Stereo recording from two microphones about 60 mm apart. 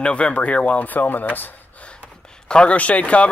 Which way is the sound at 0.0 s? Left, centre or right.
Centre.